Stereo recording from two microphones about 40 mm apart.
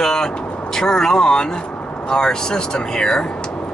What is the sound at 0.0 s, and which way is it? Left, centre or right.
Vehicle, centre.